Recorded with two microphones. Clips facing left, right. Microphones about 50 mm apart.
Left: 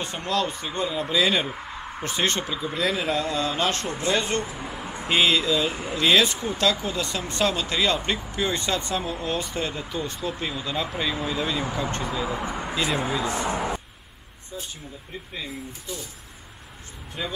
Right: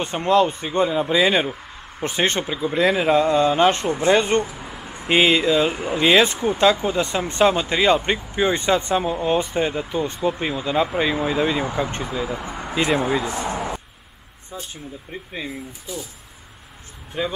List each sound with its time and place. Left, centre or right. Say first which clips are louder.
0.0 s speech: right 8 dB; right
4.4 s a sound: right 5 dB; centre
5.1 s speech: right 5 dB; right
5.7 s speech: right 6 dB; centre
5.9 s speech: right 4 dB; right
6.3 s speech: right 7 dB; centre
12.0 s speech: right 1 dB; centre
15.9 s speech: right 4 dB; centre